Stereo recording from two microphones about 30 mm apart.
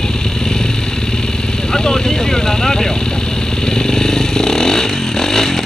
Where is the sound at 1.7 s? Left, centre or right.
Left.